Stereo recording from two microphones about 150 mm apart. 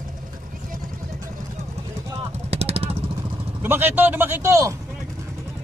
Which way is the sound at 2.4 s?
45° right (ahead or behind).